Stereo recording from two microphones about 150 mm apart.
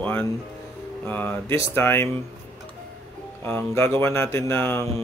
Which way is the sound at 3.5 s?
15° left (ahead or behind).